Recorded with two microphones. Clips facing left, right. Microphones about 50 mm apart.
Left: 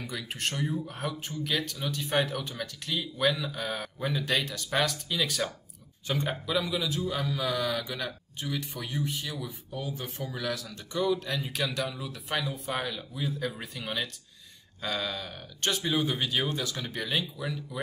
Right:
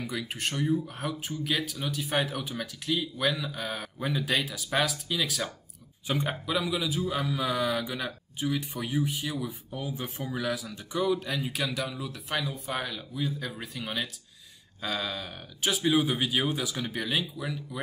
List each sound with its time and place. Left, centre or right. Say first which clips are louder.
0.0 s a man's voice: right 1 dB; centre